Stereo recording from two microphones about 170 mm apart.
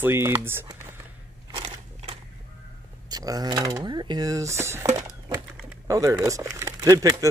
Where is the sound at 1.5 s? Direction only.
30° right (ahead or behind).